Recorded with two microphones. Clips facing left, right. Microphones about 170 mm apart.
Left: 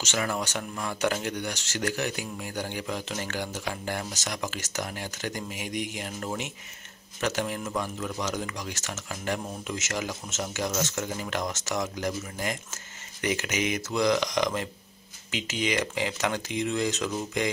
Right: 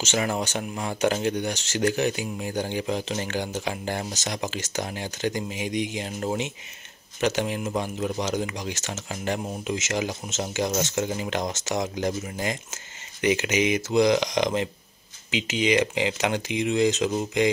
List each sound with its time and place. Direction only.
0.0 s speech: 20° right (ahead or behind)